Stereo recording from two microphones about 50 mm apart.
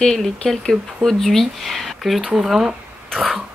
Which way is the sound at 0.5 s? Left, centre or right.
Centre.